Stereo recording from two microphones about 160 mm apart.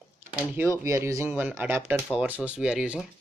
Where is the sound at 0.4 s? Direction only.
15° right (ahead or behind).